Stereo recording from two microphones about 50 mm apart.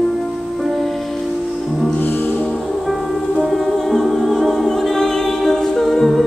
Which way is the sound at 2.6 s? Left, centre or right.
Centre.